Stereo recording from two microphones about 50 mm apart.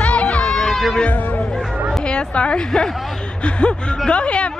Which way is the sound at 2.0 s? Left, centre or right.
Centre.